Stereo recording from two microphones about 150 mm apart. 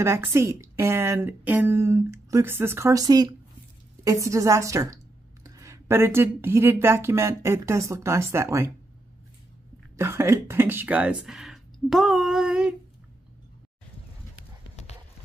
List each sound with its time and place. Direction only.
0.0 s a woman's voice: 20° right (ahead or behind)
9.9 s speech: 15° right (ahead or behind)